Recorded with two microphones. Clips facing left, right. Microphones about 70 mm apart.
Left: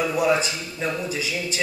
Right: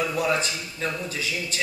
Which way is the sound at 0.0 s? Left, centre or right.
Centre.